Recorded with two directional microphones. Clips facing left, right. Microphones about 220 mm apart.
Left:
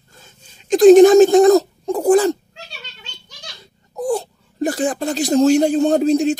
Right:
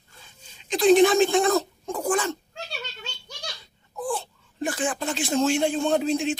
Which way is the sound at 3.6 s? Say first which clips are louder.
Left 9 dB; 40° left (ahead or behind).